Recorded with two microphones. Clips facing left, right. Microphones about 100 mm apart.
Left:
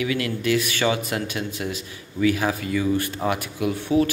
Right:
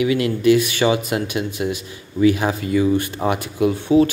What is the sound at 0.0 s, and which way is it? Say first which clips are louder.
Speech: right 7 dB; 20° right (ahead or behind).